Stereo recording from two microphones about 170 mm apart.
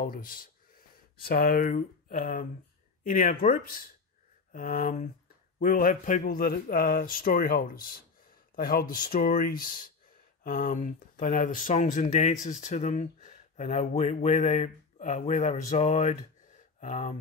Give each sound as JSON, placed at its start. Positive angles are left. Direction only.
{"t": 0.0, "sound": "a man's voice", "side_deg": 55}